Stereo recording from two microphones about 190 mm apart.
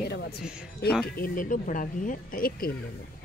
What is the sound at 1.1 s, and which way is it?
Speech, 50° left (ahead or behind).